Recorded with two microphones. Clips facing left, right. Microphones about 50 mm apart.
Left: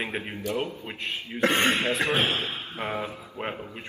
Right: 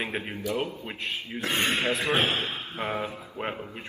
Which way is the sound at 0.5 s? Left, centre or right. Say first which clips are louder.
Even; left.